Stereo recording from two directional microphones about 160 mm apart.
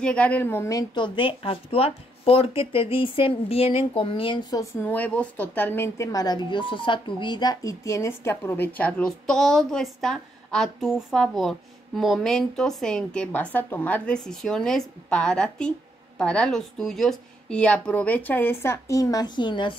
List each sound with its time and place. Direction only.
0.0 s speech: 5° left (ahead or behind); by 4.6 s 25° left (ahead or behind)
4.8 s a woman's voice: 10° left (ahead or behind); by 19.7 s 30° left (ahead or behind)